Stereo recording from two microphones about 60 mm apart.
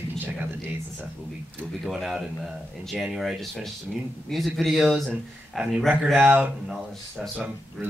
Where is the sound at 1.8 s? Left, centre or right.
Centre.